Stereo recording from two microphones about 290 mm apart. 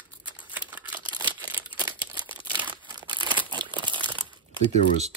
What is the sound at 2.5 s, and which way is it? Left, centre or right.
Crumpling, centre.